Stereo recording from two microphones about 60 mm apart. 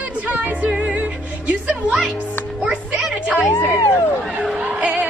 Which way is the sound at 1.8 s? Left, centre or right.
Centre.